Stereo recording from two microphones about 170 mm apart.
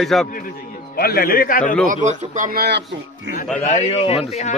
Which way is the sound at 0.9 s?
60° left (ahead or behind).